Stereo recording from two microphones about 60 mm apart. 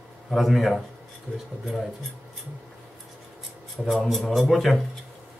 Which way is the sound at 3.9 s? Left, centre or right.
Centre.